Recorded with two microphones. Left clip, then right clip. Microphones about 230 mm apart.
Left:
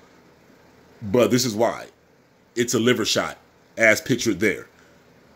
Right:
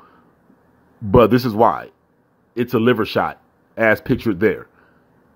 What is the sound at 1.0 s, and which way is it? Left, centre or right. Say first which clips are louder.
Speech: right 6 dB; right.